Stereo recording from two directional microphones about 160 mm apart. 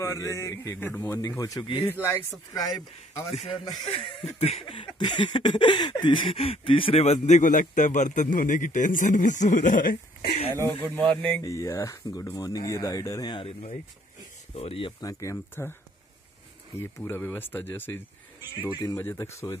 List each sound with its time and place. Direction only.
0.0 s speech: 20° left (ahead or behind)
1.9 s speech: 15° left (ahead or behind)
3.3 s speech: 35° left (ahead or behind)
4.4 s a sound: 40° left (ahead or behind); by 10.3 s 60° left (ahead or behind)
11.4 s speech: 20° left (ahead or behind)
16.7 s speech: 15° left (ahead or behind)
18.7 s speech: 30° left (ahead or behind)
18.9 s speech: 15° left (ahead or behind)